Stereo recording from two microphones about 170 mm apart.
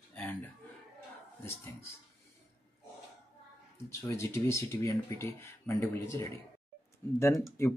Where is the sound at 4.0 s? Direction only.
15° left (ahead or behind).